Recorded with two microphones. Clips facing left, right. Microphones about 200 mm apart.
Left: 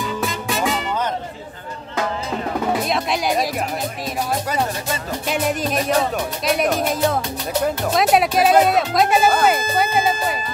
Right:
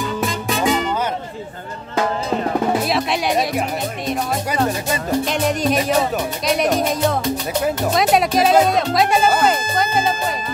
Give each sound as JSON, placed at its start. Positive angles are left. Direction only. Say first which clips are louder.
{"t": 0.5, "sound": "music", "louder": "right 4 dB", "side_deg": 0}
{"t": 2.9, "sound": "music", "louder": "right 1 dB", "side_deg": 0}
{"t": 5.3, "sound": "speech", "louder": "left 1 dB", "side_deg": 5}